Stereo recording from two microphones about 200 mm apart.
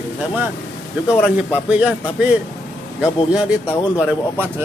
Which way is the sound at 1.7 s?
5° right (ahead or behind).